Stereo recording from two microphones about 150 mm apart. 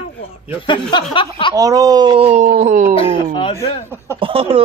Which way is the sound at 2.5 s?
60° right (ahead or behind).